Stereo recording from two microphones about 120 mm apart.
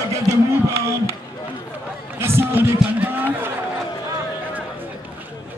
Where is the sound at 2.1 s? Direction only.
20° right (ahead or behind).